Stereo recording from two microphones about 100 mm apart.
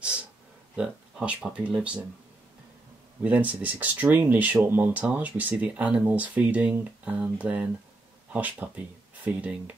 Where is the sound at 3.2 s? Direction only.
15° right (ahead or behind).